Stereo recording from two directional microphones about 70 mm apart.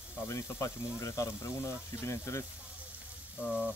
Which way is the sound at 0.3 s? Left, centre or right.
Left.